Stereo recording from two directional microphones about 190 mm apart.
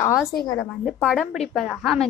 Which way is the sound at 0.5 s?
Centre (ahead or behind).